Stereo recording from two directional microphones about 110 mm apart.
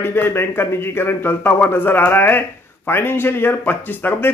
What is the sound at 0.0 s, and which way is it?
Speech, 20° left (ahead or behind).